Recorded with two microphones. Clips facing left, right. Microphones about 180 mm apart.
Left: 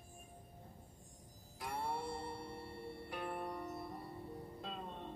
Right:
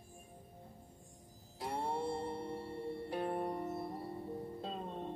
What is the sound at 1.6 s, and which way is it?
Music, 30° right (ahead or behind).